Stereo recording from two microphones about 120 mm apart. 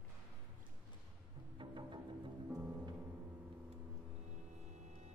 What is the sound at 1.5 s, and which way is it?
Music, 40° right (ahead or behind).